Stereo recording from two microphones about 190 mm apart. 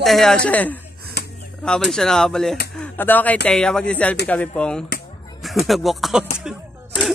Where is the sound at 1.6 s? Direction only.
5° left (ahead or behind).